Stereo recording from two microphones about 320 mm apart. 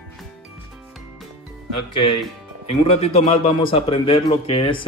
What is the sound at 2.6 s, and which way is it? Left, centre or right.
A man's voice, centre.